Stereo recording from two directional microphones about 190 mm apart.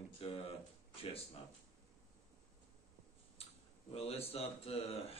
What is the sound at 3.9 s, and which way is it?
Speech, 30° left (ahead or behind).